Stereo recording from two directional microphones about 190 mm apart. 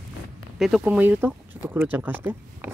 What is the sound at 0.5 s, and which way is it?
Speech, 5° right (ahead or behind).